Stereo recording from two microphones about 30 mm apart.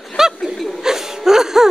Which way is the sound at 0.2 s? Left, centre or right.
Centre.